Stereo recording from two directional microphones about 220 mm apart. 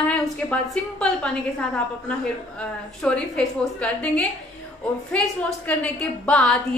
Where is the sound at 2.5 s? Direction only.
5° left (ahead or behind).